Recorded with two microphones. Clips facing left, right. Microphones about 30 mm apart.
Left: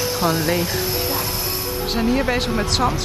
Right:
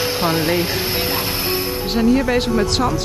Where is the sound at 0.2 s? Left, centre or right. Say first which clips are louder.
Right 1 dB; right.